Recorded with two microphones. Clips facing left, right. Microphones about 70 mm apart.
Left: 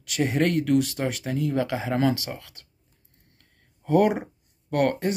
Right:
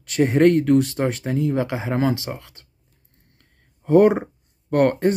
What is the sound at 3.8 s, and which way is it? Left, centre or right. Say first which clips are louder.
Speech: right 6 dB; right.